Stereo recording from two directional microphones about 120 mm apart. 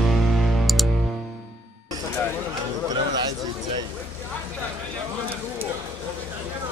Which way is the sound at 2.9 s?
35° right (ahead or behind).